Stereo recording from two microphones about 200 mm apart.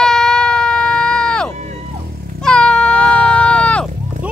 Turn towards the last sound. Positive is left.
turn(degrees=5)  # may be behind; listen again after turning